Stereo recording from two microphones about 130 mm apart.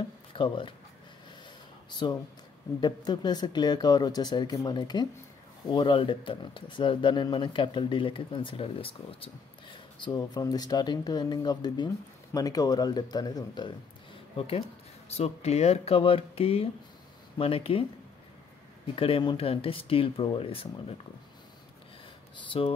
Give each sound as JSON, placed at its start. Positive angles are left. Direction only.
{"t": 0.3, "sound": "speech", "side_deg": 40}
{"t": 1.9, "sound": "speech", "side_deg": 35}
{"t": 14.3, "sound": "speech", "side_deg": 50}
{"t": 18.9, "sound": "speech", "side_deg": 45}
{"t": 22.5, "sound": "speech", "side_deg": 45}